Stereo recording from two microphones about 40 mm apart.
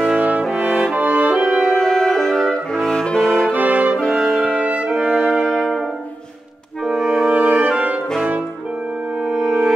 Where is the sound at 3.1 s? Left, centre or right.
Centre.